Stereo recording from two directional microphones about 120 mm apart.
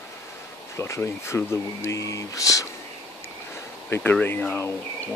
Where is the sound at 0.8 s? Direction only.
25° left (ahead or behind).